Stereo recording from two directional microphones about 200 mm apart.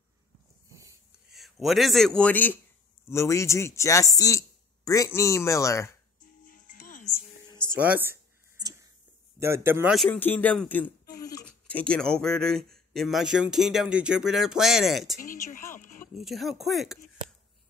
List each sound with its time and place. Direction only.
1.3 s a man's voice: centre (ahead or behind)
6.4 s music: 40° left (ahead or behind)
7.4 s music: 20° left (ahead or behind)
7.7 s a sound: 15° right (ahead or behind)
9.4 s a man's voice: 10° right (ahead or behind)
9.9 s speech: 5° left (ahead or behind)
15.7 s a sound: 40° left (ahead or behind)
16.2 s speech: centre (ahead or behind)